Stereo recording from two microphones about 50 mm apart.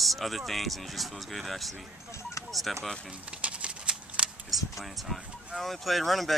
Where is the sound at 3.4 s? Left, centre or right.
Right.